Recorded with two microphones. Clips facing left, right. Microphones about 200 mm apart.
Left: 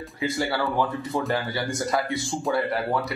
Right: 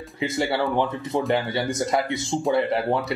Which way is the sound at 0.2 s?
20° right (ahead or behind).